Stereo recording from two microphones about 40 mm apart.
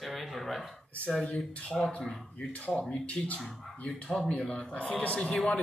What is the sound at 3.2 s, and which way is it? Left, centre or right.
Speech, centre.